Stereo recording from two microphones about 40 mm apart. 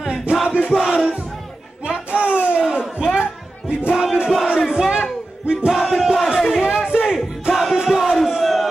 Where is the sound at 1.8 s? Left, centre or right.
Right.